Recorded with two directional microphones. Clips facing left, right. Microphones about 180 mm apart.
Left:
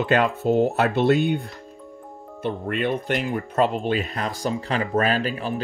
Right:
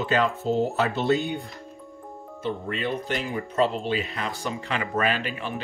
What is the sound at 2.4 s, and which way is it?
Speech, 60° left (ahead or behind).